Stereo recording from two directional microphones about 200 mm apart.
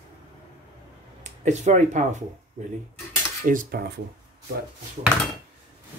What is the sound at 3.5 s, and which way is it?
Speech, 45° right (ahead or behind).